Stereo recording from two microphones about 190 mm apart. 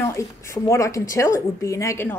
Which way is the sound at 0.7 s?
15° left (ahead or behind).